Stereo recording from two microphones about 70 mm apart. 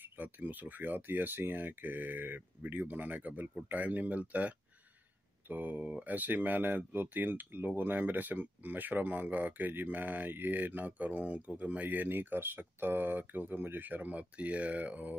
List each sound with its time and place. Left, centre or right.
0.0 s speech: right